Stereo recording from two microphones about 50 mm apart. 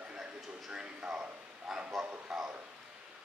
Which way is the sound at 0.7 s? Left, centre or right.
Centre.